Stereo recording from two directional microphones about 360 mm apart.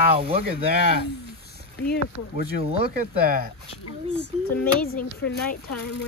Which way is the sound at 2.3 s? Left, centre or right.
Centre.